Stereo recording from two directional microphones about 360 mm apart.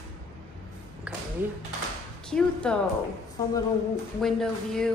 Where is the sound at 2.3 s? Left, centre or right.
Centre.